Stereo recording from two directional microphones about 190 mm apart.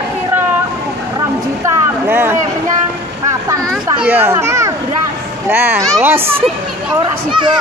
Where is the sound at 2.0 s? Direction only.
10° right (ahead or behind).